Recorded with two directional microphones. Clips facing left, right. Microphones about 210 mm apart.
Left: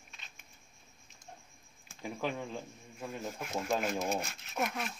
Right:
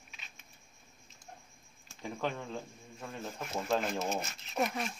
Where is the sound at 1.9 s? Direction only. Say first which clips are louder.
Even; 10° left (ahead or behind).